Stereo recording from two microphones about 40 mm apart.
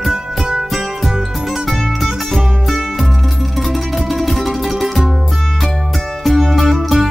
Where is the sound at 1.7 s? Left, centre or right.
Centre.